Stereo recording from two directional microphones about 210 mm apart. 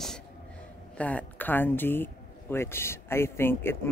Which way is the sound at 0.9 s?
5° left (ahead or behind).